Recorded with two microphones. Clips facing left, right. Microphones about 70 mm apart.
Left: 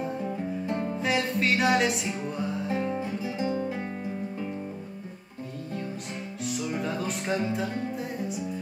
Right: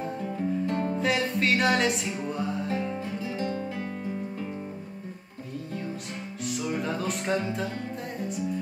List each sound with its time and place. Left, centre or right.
0.7 s music: centre
0.9 s music: centre
2.9 s music: centre
6.4 s music: centre